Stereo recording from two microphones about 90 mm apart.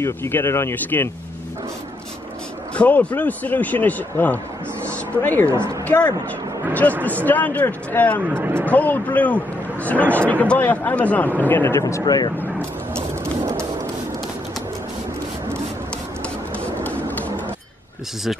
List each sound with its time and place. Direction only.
0.0 s speech: 25° left (ahead or behind)
2.7 s speech: 15° left (ahead or behind)
4.8 s a sound: 20° left (ahead or behind)
5.5 s speech: 30° right (ahead or behind)
6.7 s speech: 20° left (ahead or behind)
8.3 s speech: 25° right (ahead or behind)
8.6 s speech: 20° left (ahead or behind)
11.8 s speech: 40° left (ahead or behind)
12.9 s a sound: 30° right (ahead or behind)
16.8 s a sound: 15° left (ahead or behind)